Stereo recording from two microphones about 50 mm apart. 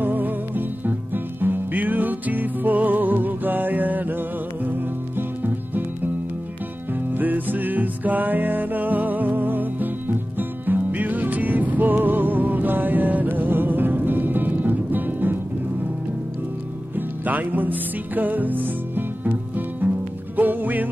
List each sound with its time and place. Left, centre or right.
0.0 s music: right
7.2 s music: right
16.9 s music: right